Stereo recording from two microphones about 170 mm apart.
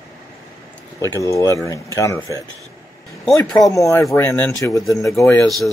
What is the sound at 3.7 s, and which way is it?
Speech, 20° left (ahead or behind).